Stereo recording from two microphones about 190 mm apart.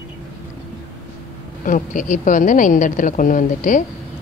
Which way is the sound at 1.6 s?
45° left (ahead or behind).